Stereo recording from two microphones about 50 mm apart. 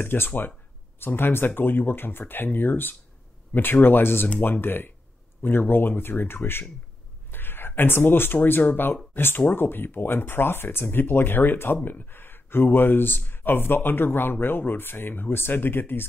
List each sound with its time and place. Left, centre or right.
0.0 s speech: left